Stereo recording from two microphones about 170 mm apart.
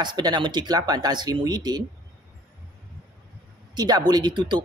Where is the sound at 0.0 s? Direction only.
25° right (ahead or behind).